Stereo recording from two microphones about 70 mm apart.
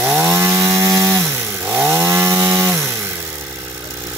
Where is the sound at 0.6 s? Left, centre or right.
Right.